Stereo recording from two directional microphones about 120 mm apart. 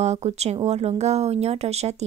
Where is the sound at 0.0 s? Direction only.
65° right (ahead or behind).